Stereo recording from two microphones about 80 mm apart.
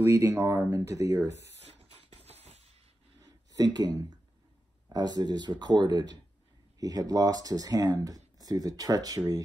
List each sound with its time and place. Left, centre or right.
0.0 s speech: right
3.5 s speech: right
6.8 s speech: right